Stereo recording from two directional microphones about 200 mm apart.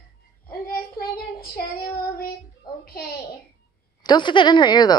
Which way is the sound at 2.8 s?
50° left (ahead or behind).